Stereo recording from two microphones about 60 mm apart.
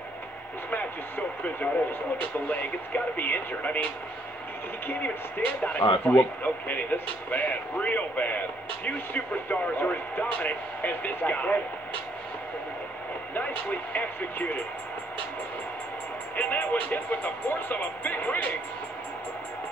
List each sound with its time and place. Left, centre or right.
0.7 s speech: left
5.6 s speech: left
13.3 s speech: left
16.3 s speech: left